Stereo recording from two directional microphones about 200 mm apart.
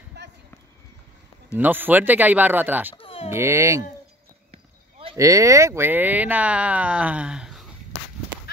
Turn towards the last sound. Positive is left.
turn(degrees=-5)  # may be behind; listen again after turning